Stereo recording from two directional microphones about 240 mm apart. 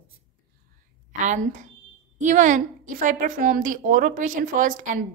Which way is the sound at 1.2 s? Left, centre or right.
Right.